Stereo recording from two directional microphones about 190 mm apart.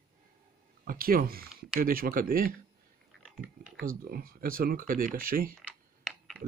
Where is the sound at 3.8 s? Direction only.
50° right (ahead or behind).